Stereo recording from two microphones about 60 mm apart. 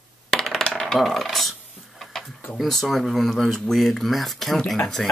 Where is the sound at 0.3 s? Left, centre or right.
Centre.